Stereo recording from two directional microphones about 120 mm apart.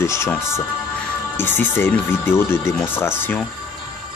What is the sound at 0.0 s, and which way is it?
Speech, 25° left (ahead or behind).